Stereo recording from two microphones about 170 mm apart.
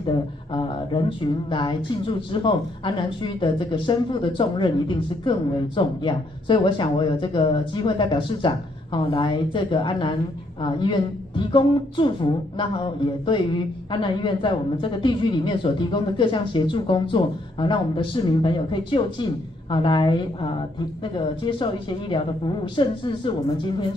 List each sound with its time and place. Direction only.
0.1 s speech: 25° left (ahead or behind)